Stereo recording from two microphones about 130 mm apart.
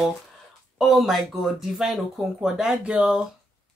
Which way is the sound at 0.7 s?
Centre (ahead or behind).